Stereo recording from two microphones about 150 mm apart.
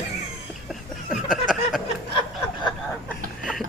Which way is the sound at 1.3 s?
Centre (ahead or behind).